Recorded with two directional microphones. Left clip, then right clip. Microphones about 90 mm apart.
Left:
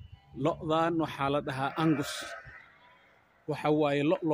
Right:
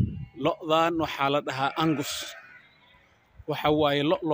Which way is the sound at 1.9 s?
25° right (ahead or behind).